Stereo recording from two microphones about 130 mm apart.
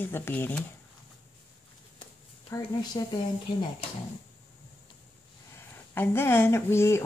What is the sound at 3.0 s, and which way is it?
Speech, 35° left (ahead or behind).